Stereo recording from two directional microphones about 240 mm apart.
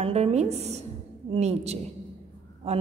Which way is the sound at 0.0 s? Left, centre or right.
Right.